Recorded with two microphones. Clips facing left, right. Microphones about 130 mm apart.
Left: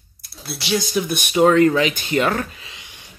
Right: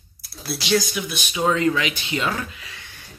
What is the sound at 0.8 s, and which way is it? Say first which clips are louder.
Speech: left 3 dB; 35° left (ahead or behind).